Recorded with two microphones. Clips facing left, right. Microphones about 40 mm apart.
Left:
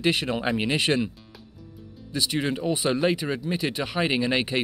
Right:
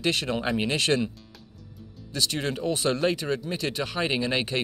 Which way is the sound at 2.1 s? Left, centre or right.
Centre.